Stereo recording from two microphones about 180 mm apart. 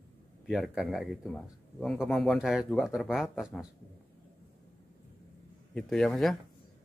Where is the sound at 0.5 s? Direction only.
Centre (ahead or behind).